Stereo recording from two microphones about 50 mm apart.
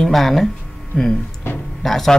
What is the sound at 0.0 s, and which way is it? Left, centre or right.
Speech, centre.